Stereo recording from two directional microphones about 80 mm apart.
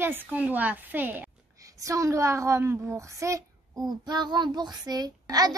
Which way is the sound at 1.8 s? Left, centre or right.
Right.